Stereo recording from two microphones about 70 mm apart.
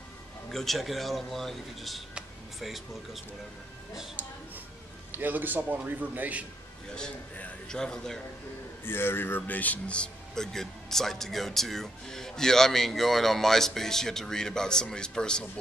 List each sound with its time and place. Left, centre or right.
0.5 s speech: centre
4.2 s a man's voice: right
7.0 s a man's voice: centre
8.8 s speech: left; by 15.4 s centre